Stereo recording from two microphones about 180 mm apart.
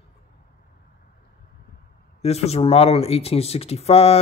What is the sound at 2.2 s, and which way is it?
Speech, 35° left (ahead or behind).